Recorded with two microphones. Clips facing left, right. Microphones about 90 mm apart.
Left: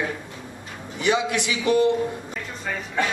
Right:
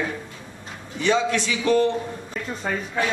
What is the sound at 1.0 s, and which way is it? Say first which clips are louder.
Speech: right 1 dB; 15° left (ahead or behind).